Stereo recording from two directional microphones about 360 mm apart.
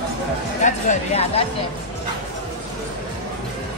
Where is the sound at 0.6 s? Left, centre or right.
Centre.